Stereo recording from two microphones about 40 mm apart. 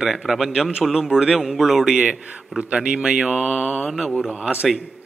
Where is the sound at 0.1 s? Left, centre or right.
Centre.